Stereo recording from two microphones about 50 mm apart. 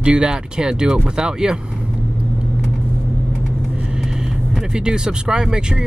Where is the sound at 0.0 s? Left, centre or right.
Centre.